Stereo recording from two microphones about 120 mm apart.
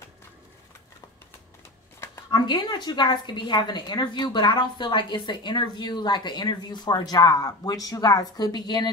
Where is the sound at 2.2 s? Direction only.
35° left (ahead or behind).